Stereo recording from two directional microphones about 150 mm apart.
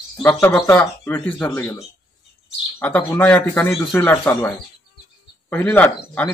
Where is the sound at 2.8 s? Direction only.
15° left (ahead or behind).